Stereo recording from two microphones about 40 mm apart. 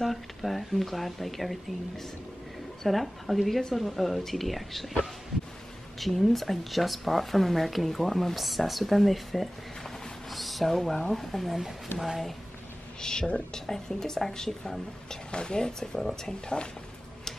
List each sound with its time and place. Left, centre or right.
0.0 s speech: centre
2.8 s speech: centre
5.9 s speech: centre
13.0 s speech: centre
16.0 s speech: centre